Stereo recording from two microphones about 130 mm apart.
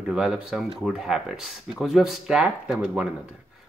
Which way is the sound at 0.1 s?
5° right (ahead or behind).